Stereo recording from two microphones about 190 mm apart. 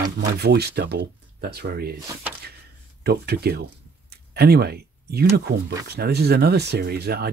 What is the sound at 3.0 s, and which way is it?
Speech, 55° right (ahead or behind).